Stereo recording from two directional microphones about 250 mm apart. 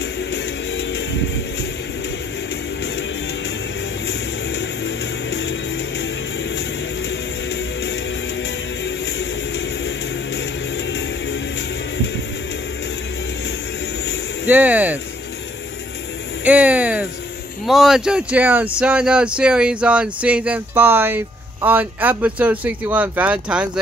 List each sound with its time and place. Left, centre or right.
0.3 s music: left
4.1 s music: left
7.1 s music: left
14.4 s speech: centre
16.4 s a sound: centre
17.6 s speech: centre